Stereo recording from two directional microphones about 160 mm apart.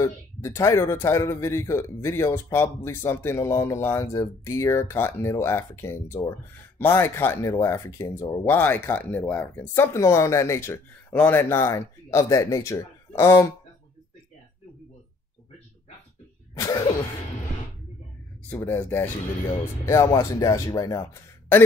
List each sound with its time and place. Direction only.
0.0 s speech: 20° left (ahead or behind)
16.5 s cough: 20° left (ahead or behind)
18.5 s a man's voice: 15° left (ahead or behind)